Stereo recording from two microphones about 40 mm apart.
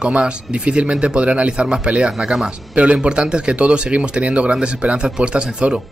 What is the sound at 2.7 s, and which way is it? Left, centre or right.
Speech, right.